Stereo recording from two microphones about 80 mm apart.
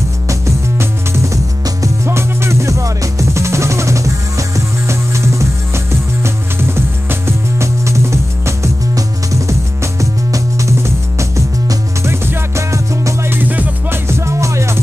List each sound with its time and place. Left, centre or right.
0.3 s music: right
14.0 s music: right